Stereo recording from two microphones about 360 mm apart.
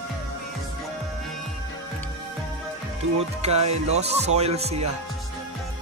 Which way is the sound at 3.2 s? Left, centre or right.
Centre.